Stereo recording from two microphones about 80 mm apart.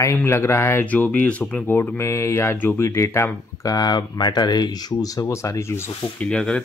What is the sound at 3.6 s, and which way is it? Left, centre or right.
Speech, left.